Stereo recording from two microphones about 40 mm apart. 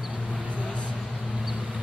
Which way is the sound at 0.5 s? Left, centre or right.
Left.